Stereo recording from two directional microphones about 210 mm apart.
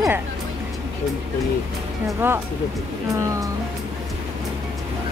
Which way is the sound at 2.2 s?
10° right (ahead or behind).